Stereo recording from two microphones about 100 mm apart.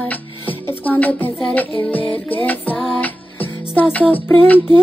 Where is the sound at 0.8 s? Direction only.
15° left (ahead or behind).